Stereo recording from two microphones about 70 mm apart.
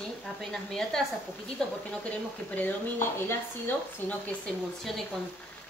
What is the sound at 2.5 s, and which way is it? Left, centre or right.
Speech, left.